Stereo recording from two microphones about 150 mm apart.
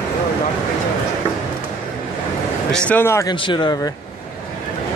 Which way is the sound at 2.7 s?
10° left (ahead or behind).